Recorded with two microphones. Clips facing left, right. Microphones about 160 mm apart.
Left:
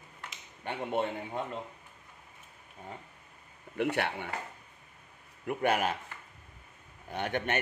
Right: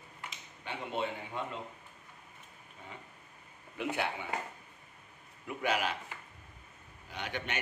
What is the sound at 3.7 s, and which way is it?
Speech, 60° left (ahead or behind).